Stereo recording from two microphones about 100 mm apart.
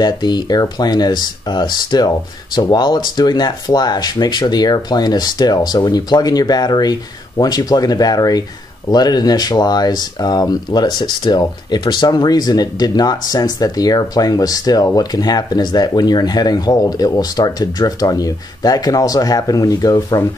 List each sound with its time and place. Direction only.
0.0 s speech: 45° left (ahead or behind)